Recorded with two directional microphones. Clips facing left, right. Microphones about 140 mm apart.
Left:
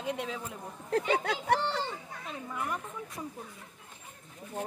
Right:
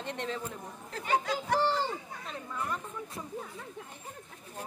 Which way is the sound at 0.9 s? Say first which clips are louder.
Left 2 dB; 60° left (ahead or behind).